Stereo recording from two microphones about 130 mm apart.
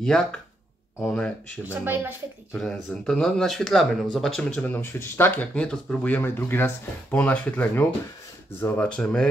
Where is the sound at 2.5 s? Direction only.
Centre (ahead or behind).